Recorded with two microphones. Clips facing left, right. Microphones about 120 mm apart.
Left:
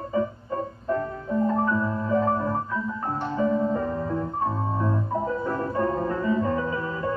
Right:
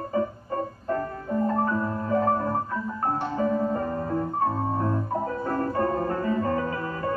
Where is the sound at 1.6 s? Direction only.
35° right (ahead or behind).